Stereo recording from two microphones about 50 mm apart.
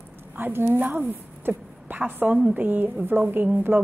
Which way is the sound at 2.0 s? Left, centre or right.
Right.